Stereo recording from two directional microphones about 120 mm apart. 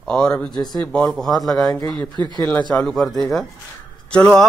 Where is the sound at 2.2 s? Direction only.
40° right (ahead or behind).